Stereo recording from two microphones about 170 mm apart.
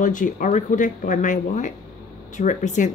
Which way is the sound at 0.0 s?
50° left (ahead or behind).